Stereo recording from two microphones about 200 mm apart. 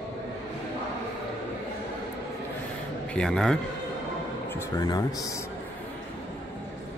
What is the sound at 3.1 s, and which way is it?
Speech, 5° left (ahead or behind).